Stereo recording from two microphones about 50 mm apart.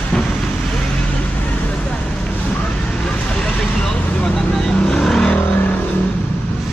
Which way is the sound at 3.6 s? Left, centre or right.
Centre.